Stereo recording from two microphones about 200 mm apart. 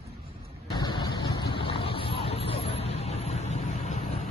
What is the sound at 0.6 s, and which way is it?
Vehicle, 20° left (ahead or behind).